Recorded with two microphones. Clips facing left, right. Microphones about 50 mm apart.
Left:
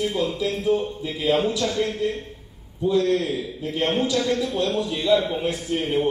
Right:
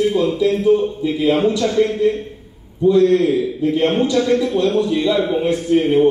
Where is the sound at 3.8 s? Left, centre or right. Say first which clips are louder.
Right 5 dB; right.